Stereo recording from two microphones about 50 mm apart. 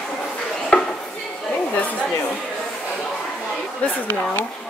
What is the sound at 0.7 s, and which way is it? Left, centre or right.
Chopping, left.